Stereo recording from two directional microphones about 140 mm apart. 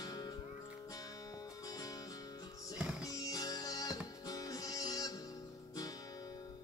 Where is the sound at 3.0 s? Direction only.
25° left (ahead or behind).